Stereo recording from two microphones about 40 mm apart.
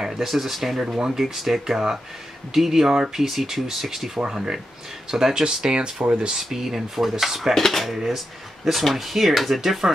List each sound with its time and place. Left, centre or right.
0.0 s speech: centre
7.5 s speech: centre